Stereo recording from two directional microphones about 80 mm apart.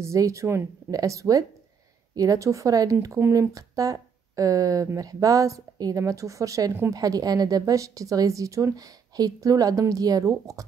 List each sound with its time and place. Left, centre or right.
0.0 s a woman's voice: right